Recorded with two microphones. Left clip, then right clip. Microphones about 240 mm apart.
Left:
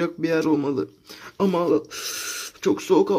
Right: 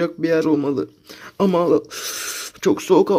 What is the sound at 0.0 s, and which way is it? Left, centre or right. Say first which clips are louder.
Speech: right 4 dB; centre.